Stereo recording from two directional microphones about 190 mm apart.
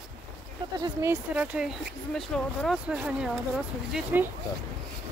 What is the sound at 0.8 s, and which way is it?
Speech, 15° right (ahead or behind).